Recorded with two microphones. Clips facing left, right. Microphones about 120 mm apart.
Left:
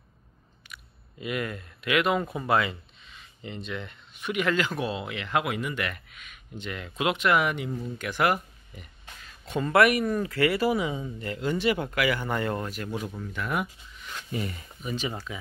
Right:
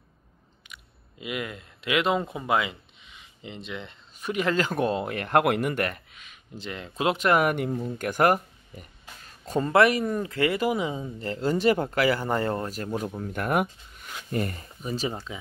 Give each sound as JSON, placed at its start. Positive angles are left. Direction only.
{"t": 1.2, "sound": "speech", "side_deg": -15}
{"t": 4.2, "sound": "speech", "side_deg": -35}
{"t": 5.9, "sound": "speech", "side_deg": -30}
{"t": 9.2, "sound": "music", "side_deg": -40}
{"t": 9.7, "sound": "speech", "side_deg": -25}
{"t": 13.2, "sound": "speech", "side_deg": -50}